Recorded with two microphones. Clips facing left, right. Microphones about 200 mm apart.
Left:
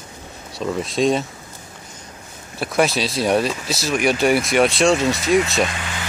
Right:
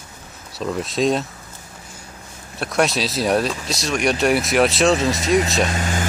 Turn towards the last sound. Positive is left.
turn(degrees=-45)  # may be behind; listen again after turning